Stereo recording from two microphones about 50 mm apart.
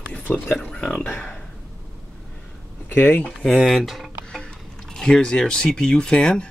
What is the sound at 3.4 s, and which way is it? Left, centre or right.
Speech, centre.